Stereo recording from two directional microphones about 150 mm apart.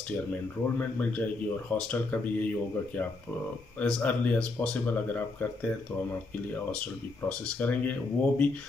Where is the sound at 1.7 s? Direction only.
15° left (ahead or behind).